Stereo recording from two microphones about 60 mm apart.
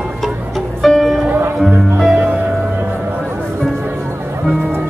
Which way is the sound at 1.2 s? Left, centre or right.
Right.